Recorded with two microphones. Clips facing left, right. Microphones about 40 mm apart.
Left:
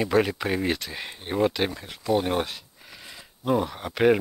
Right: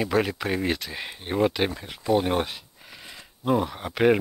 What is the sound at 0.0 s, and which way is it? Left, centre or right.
Speech, centre.